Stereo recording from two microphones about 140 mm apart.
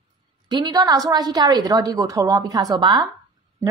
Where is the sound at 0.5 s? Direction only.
30° right (ahead or behind).